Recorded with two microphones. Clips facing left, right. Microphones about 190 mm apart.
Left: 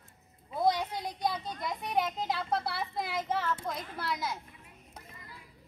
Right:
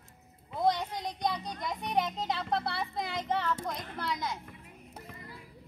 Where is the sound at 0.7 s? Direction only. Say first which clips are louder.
Even; 10° left (ahead or behind).